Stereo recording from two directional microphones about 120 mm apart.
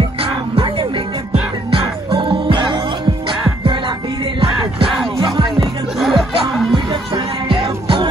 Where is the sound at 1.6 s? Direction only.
45° right (ahead or behind).